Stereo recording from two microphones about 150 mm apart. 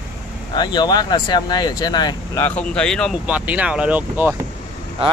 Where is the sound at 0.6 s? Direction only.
30° left (ahead or behind).